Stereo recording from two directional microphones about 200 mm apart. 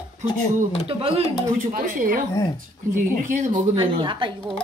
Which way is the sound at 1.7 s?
45° right (ahead or behind).